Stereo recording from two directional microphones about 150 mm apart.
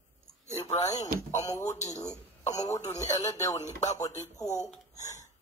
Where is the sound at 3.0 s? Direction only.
20° left (ahead or behind).